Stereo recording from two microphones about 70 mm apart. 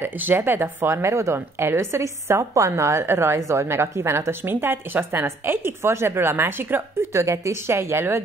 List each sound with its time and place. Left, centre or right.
0.0 s a woman's voice: right